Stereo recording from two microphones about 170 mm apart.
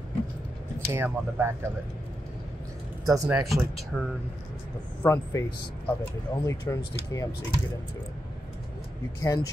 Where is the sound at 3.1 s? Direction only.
20° right (ahead or behind).